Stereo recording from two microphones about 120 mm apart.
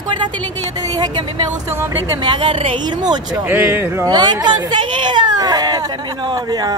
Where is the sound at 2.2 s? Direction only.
45° right (ahead or behind).